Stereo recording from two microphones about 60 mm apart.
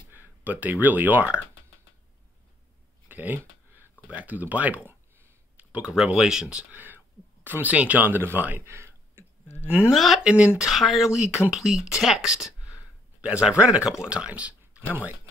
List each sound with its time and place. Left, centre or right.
0.1 s speech: right
3.1 s a sound: right
4.1 s speech: right
5.8 s speech: centre
6.7 s whispering: right
7.4 s speech: right
8.6 s a sound: right
9.7 s speech: centre
9.9 s speech: centre
10.2 s speech: centre
10.6 s speech: centre
12.7 s a sound: centre
13.9 s speech: centre